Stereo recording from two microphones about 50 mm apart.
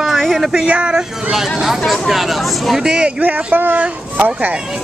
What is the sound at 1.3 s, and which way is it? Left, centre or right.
Speech, centre.